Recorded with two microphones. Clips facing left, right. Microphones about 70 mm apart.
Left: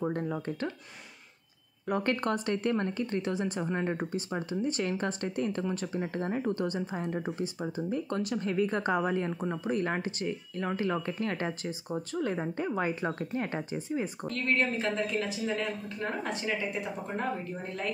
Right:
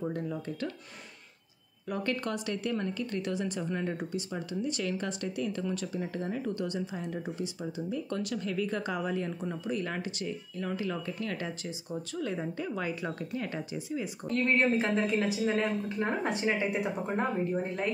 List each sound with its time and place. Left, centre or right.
0.0 s speech: left
1.9 s speech: left
14.3 s speech: right